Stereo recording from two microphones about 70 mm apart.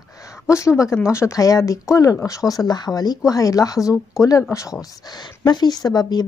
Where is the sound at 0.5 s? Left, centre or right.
Left.